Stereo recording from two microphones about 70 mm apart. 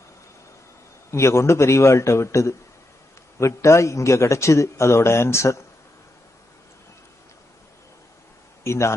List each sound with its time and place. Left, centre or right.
1.1 s a man's voice: left
8.6 s speech: left